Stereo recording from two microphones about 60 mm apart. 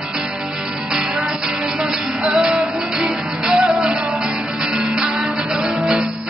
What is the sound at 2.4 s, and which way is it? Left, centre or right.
Music, centre.